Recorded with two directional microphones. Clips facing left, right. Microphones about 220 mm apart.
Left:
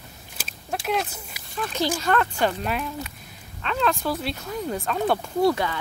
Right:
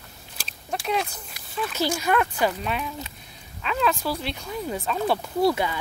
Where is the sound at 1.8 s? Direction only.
10° right (ahead or behind).